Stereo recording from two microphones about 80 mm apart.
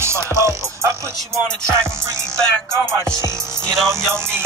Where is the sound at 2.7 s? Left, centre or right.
Right.